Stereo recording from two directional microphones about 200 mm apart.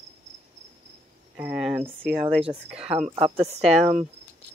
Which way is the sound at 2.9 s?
30° right (ahead or behind).